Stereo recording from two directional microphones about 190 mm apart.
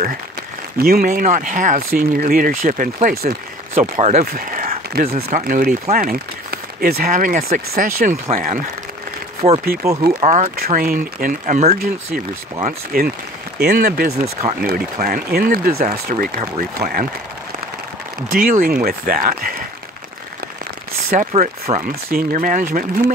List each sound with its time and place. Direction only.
0.8 s speech: 50° right (ahead or behind)
3.9 s speech: 35° right (ahead or behind)
4.3 s a sound: 45° right (ahead or behind)
5.1 s speech: 45° right (ahead or behind)
9.4 s speech: 25° right (ahead or behind)
10.2 s speech: 40° right (ahead or behind)
14.1 s speech: 35° right (ahead or behind)
14.6 s speech: 50° right (ahead or behind)
18.3 s speech: 45° right (ahead or behind)
21.3 s speech: 35° right (ahead or behind)